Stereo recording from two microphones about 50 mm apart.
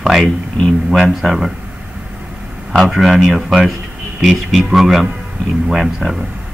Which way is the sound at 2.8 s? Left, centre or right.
Centre.